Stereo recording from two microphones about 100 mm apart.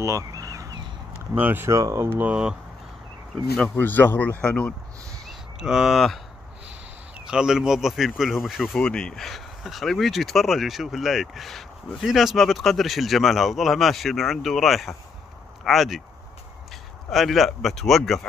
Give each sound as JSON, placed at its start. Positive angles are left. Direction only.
{"t": 0.0, "sound": "a sound", "side_deg": -35}
{"t": 1.3, "sound": "speech", "side_deg": -20}
{"t": 1.7, "sound": "speech", "side_deg": -30}
{"t": 3.7, "sound": "speech", "side_deg": 20}
{"t": 5.6, "sound": "speech", "side_deg": -5}
{"t": 7.2, "sound": "speech", "side_deg": -5}
{"t": 8.7, "sound": "speech", "side_deg": 10}
{"t": 17.1, "sound": "speech", "side_deg": 0}